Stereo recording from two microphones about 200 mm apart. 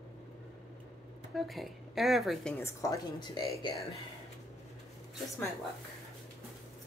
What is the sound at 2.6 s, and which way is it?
Speech, 15° left (ahead or behind).